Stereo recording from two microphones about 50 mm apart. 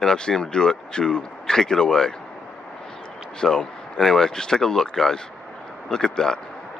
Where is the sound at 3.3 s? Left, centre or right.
Centre.